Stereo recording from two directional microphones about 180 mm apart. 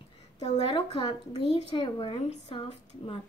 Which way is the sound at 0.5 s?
30° left (ahead or behind).